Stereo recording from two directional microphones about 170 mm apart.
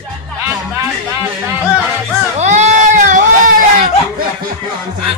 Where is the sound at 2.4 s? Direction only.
40° right (ahead or behind).